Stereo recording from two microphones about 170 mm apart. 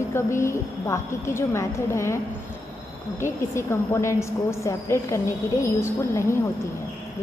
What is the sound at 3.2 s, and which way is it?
A woman's voice, 15° left (ahead or behind).